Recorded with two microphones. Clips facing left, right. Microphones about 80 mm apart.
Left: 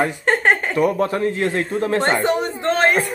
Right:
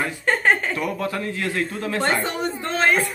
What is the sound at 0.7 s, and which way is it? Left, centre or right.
Speech, left.